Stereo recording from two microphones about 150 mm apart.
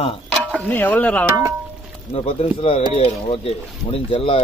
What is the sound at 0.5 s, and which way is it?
Speech, 10° left (ahead or behind).